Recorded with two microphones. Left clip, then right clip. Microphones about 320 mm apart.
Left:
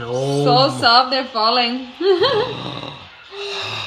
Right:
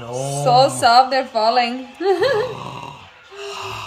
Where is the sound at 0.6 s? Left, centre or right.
Right.